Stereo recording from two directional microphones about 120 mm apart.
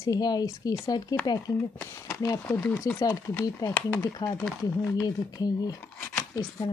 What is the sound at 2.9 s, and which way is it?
A woman's voice, 30° left (ahead or behind).